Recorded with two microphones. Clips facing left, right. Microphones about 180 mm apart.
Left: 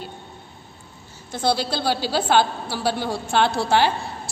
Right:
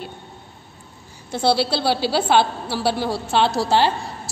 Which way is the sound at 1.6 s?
45° left (ahead or behind).